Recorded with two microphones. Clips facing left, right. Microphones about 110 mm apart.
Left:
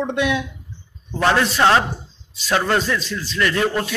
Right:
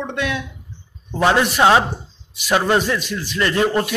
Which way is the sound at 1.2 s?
15° right (ahead or behind).